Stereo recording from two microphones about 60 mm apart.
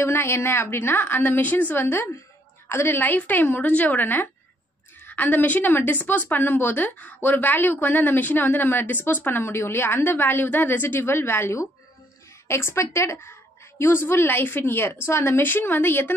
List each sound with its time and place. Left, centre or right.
0.0 s a woman's voice: left
13.7 s a woman's voice: left